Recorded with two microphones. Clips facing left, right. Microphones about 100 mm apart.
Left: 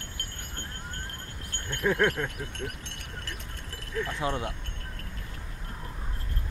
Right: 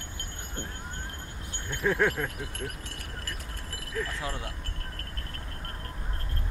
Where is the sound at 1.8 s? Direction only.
Centre (ahead or behind).